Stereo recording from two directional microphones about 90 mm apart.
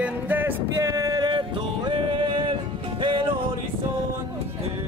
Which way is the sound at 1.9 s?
65° right (ahead or behind).